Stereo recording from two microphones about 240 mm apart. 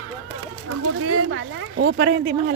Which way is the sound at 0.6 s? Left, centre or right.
Right.